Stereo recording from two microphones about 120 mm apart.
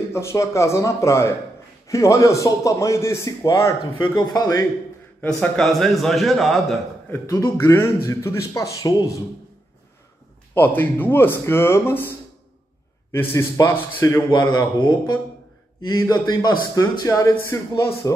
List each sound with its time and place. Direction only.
0.1 s speech: 25° left (ahead or behind)
4.0 s a man's voice: 40° left (ahead or behind)
5.4 s a man's voice: 5° left (ahead or behind)
7.1 s speech: 20° left (ahead or behind)
10.5 s speech: 15° left (ahead or behind)
13.1 s speech: 20° left (ahead or behind)
14.3 s a man's voice: 35° left (ahead or behind)
16.4 s speech: 30° left (ahead or behind)